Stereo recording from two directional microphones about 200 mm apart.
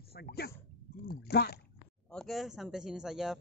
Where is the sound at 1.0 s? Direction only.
55° left (ahead or behind).